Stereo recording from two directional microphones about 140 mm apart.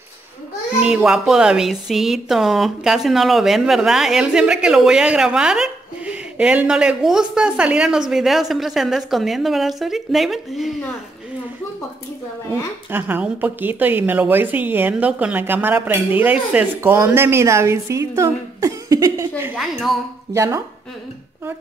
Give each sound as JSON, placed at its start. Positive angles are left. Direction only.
{"t": 0.7, "sound": "speech", "side_deg": -5}
{"t": 12.9, "sound": "a woman's voice", "side_deg": -15}
{"t": 19.5, "sound": "speech", "side_deg": -5}
{"t": 20.3, "sound": "speech", "side_deg": -20}